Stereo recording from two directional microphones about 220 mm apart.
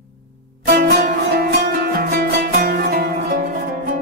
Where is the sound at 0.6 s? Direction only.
45° right (ahead or behind).